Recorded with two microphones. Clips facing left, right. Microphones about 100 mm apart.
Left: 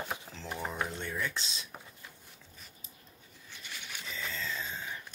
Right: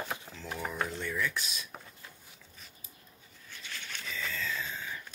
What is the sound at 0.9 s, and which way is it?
Speech, 25° left (ahead or behind).